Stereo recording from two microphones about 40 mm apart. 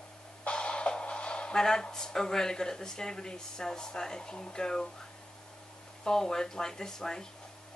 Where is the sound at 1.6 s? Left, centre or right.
Centre.